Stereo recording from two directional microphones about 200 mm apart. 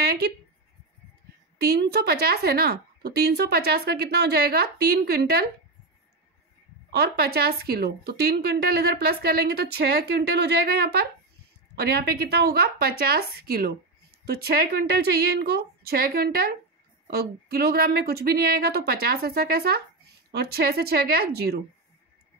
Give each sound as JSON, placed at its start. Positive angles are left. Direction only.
{"t": 1.6, "sound": "speech", "side_deg": -55}
{"t": 6.9, "sound": "speech", "side_deg": -50}